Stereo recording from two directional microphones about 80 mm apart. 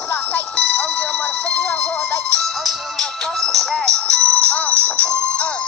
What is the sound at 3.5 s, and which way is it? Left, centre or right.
Music, centre.